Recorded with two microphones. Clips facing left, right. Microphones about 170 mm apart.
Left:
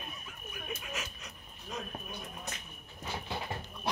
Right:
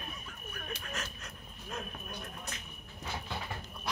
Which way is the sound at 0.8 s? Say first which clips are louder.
Even; 5° left (ahead or behind).